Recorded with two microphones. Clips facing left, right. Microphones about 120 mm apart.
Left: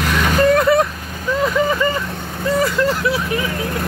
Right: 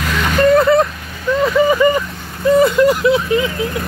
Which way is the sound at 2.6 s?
20° right (ahead or behind).